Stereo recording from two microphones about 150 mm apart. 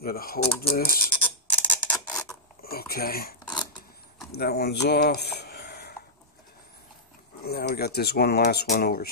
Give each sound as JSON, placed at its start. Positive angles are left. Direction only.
{"t": 0.0, "sound": "speech", "side_deg": 80}
{"t": 1.5, "sound": "a sound", "side_deg": 10}
{"t": 2.6, "sound": "speech", "side_deg": 90}
{"t": 4.4, "sound": "speech", "side_deg": 90}
{"t": 7.4, "sound": "speech", "side_deg": 90}